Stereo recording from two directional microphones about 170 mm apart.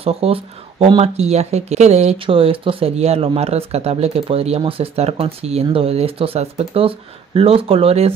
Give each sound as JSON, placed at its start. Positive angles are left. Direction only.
{"t": 0.0, "sound": "speech", "side_deg": -35}